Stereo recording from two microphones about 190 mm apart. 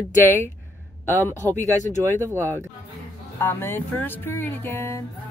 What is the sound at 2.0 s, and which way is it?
Speech, 15° right (ahead or behind).